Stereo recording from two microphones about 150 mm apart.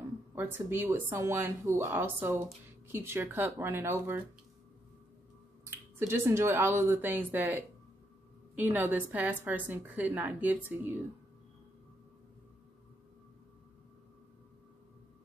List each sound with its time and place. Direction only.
0.3 s speech: 15° right (ahead or behind)
5.7 s speech: 15° right (ahead or behind)